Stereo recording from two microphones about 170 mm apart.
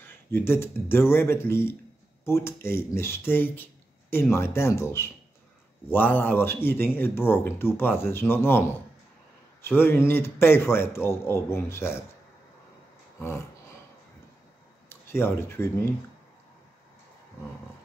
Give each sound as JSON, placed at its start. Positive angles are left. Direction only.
{"t": 0.0, "sound": "a man's voice", "side_deg": 15}
{"t": 13.2, "sound": "a sound", "side_deg": 15}
{"t": 14.9, "sound": "speech", "side_deg": 15}